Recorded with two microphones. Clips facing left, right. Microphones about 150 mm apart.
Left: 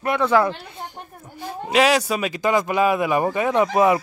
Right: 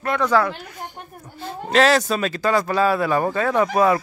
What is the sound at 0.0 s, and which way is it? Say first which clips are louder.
Speech: left 1 dB; 25° left (ahead or behind).